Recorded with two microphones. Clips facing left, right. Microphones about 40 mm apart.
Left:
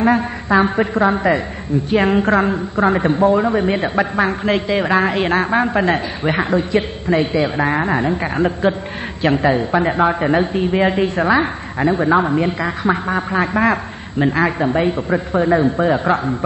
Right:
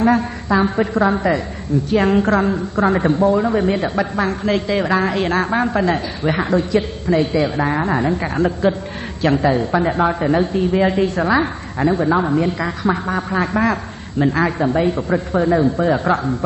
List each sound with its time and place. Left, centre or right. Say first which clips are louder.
0.0 s a woman's voice: even; left